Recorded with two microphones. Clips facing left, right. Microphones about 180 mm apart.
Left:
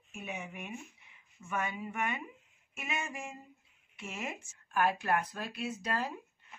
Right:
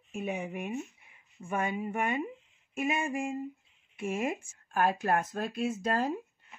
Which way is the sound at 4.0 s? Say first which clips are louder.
Right 9 dB; 50° right (ahead or behind).